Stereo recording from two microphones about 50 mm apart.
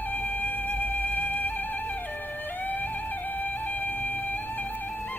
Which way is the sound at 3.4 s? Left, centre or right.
Left.